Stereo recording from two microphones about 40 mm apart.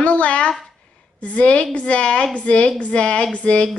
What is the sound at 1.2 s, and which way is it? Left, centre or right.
Speech, left.